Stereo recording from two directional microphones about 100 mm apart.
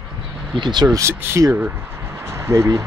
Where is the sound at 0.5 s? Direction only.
55° right (ahead or behind).